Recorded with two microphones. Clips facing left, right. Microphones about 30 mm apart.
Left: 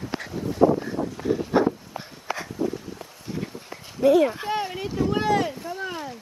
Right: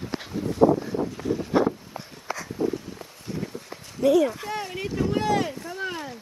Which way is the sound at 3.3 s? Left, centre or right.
Centre.